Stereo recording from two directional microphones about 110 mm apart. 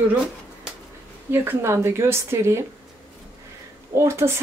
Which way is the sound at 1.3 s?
20° right (ahead or behind).